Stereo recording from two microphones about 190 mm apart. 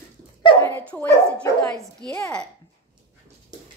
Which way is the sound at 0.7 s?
10° left (ahead or behind).